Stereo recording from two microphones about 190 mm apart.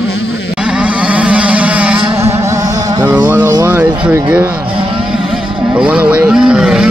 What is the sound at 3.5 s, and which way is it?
Music, 10° right (ahead or behind).